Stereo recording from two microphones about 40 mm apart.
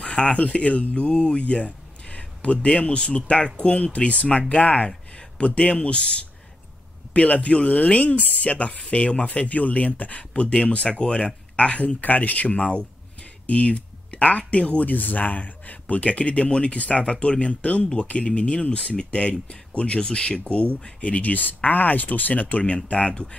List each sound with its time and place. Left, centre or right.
0.0 s speech: left
9.5 s speech: left
13.5 s a sound: left
14.5 s speech: left
14.9 s speech: left
21.2 s speech: left